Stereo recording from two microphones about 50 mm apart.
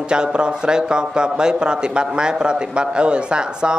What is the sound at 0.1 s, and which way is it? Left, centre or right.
A man's voice, centre.